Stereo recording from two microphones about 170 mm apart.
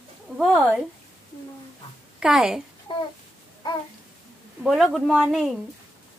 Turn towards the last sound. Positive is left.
turn(degrees=0)  # may be behind; listen again after turning